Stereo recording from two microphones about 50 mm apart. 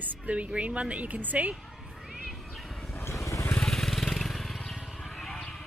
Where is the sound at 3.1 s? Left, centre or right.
Left.